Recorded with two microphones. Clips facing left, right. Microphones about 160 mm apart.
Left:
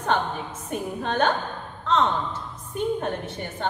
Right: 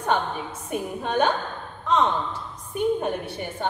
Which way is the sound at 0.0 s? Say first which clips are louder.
Even; 10° right (ahead or behind).